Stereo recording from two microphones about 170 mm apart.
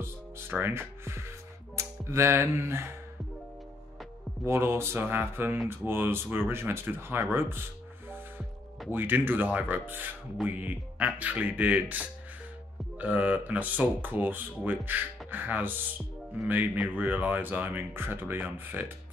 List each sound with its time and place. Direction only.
0.0 s music: 15° right (ahead or behind)
1.8 s speech: 15° right (ahead or behind)
4.5 s speech: 15° right (ahead or behind)
8.9 s speech: 10° right (ahead or behind)